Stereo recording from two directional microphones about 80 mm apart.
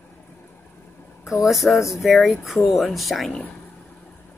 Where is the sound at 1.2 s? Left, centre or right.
Centre.